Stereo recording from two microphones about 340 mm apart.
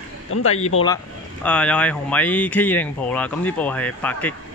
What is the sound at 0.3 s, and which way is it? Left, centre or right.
Speech, left.